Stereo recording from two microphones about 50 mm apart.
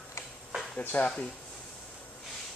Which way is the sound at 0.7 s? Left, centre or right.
Left.